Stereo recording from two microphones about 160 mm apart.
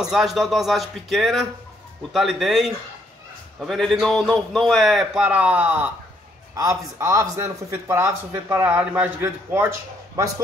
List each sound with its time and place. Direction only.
0.0 s a man's voice: 5° right (ahead or behind)
6.5 s speech: 20° right (ahead or behind)